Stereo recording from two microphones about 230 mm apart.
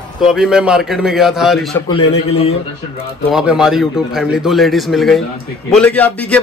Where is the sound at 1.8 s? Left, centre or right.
Left.